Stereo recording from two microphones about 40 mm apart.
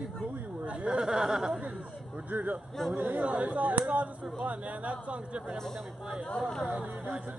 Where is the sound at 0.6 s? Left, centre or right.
Right.